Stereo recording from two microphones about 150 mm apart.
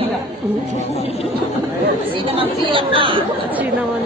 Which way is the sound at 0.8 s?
45° left (ahead or behind).